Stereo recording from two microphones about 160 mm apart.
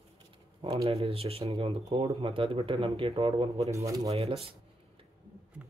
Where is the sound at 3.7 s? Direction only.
20° right (ahead or behind).